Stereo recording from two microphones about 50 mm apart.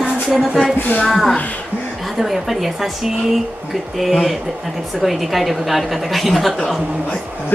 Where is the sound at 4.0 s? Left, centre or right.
Centre.